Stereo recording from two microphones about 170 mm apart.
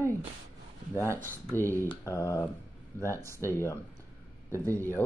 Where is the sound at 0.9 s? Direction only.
15° left (ahead or behind).